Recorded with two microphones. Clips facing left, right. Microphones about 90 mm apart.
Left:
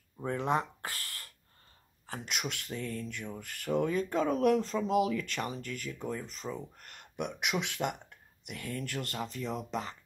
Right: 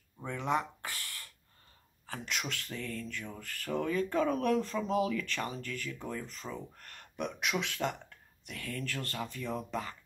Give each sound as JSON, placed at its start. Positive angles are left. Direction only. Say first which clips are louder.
{"t": 0.2, "sound": "speech", "louder": "left 2 dB", "side_deg": 35}
{"t": 2.0, "sound": "speech", "louder": "left 1 dB", "side_deg": 25}